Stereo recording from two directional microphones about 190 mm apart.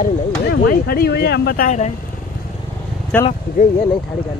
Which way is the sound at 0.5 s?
55° left (ahead or behind).